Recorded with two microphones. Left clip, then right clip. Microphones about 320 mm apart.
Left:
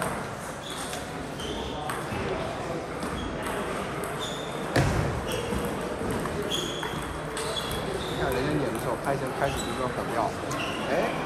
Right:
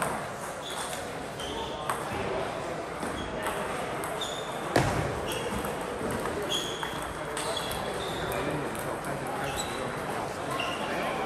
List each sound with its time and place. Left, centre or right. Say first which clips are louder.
4.7 s basketball bounce: even; right